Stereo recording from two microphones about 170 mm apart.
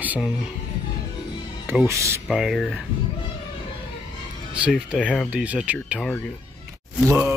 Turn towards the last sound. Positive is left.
turn(degrees=-15)  # may be behind; listen again after turning